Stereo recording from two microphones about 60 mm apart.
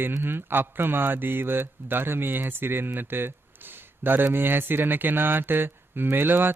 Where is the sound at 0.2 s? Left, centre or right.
Right.